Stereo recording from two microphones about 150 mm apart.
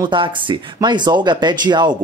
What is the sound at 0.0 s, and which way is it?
Speech, 35° right (ahead or behind).